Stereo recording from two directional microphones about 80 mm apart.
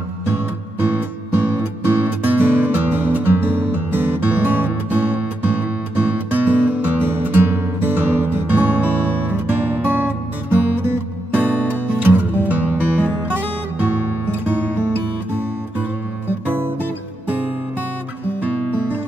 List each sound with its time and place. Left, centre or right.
0.3 s music: right
11.4 s music: centre
11.9 s music: right
16.3 s music: right